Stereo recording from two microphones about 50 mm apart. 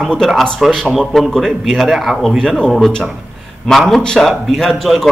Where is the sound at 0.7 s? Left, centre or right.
Centre.